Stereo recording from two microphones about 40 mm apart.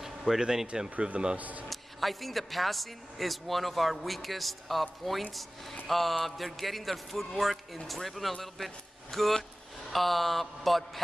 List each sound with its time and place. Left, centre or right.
0.0 s speech: centre
0.8 s speech: right
1.7 s speech: centre
5.9 s speech: centre